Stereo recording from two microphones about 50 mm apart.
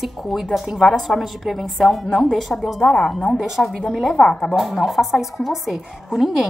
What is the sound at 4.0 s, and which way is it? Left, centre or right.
A woman's voice, centre.